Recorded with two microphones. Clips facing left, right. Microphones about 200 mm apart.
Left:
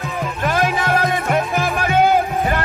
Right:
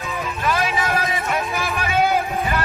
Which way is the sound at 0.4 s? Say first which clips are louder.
Left 3 dB; 50° left (ahead or behind).